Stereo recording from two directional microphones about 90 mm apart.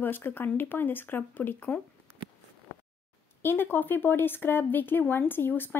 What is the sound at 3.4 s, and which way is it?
Speech, 20° left (ahead or behind).